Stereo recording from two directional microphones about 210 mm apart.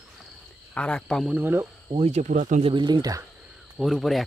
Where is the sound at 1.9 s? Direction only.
30° right (ahead or behind).